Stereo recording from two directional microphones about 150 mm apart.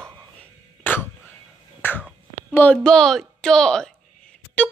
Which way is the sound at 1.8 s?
15° left (ahead or behind).